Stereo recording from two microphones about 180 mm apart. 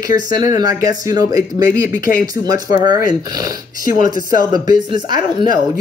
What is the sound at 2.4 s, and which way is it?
Speech, 20° right (ahead or behind).